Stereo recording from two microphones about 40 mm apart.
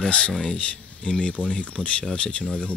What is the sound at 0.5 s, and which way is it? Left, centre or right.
Speech, left.